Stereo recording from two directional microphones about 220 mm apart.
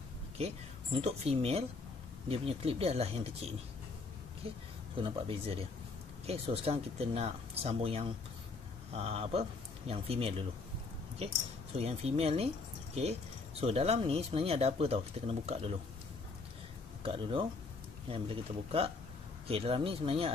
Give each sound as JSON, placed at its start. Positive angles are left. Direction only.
{"t": 0.9, "sound": "speech", "side_deg": -25}
{"t": 4.9, "sound": "speech", "side_deg": -25}
{"t": 13.6, "sound": "speech", "side_deg": -25}
{"t": 17.0, "sound": "speech", "side_deg": -25}